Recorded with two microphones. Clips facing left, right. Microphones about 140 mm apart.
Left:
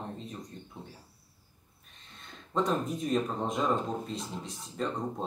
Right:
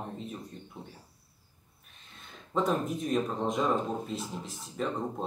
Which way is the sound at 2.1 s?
Centre (ahead or behind).